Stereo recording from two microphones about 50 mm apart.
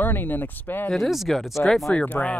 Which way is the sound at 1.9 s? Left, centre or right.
Left.